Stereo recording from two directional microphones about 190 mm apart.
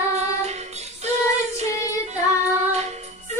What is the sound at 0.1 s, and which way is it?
Child singing, 35° right (ahead or behind).